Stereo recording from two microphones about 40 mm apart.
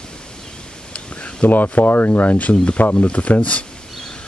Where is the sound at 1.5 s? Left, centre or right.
Left.